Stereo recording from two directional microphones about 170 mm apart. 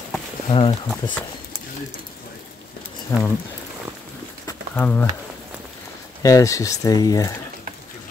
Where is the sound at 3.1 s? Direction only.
15° left (ahead or behind).